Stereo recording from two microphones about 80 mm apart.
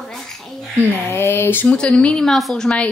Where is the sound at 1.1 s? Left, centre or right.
Left.